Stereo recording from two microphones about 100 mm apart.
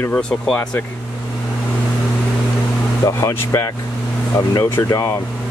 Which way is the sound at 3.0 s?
30° left (ahead or behind).